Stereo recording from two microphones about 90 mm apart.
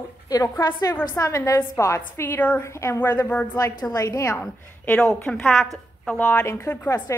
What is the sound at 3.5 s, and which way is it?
Speech, 45° left (ahead or behind).